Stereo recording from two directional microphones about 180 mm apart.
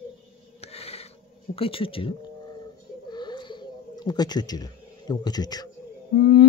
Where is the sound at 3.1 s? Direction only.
25° left (ahead or behind).